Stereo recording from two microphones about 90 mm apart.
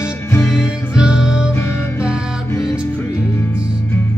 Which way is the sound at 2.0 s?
10° right (ahead or behind).